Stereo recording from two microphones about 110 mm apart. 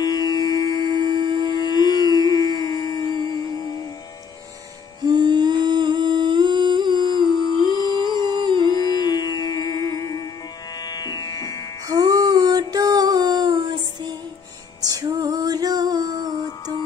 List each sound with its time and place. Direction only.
0.0 s music: 40° left (ahead or behind)
5.0 s humming: 40° right (ahead or behind)
7.4 s humming: 40° left (ahead or behind)
8.0 s a sound: 40° right (ahead or behind)
8.7 s music: 35° left (ahead or behind)
11.9 s a sound: 40° right (ahead or behind)
14.8 s music: 35° right (ahead or behind)